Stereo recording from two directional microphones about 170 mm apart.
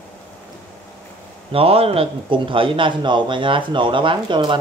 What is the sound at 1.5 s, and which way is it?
A man's voice, 35° right (ahead or behind).